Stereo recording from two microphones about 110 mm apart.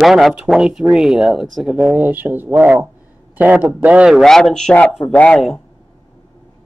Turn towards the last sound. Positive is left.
turn(degrees=5)  # may be behind; listen again after turning